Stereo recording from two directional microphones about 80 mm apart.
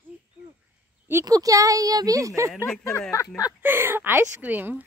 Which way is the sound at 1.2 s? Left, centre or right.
Right.